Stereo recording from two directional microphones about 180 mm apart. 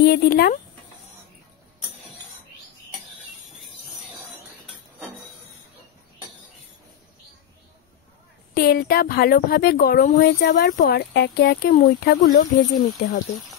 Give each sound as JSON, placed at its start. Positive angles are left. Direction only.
{"t": 0.0, "sound": "speech", "side_deg": 60}
{"t": 8.5, "sound": "speech", "side_deg": 55}